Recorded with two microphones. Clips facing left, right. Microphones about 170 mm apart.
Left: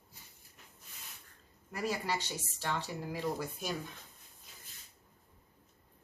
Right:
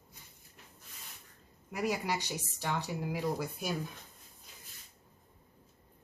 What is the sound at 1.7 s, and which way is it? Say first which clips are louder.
Speech: right 2 dB; 15° right (ahead or behind).